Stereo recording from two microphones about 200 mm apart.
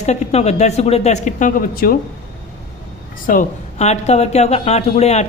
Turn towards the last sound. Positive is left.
turn(degrees=35)  # may be behind; listen again after turning